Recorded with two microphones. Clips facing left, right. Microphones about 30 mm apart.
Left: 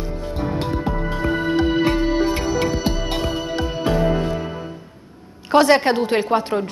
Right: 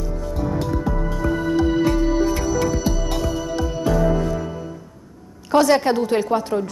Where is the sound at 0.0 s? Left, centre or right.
Left.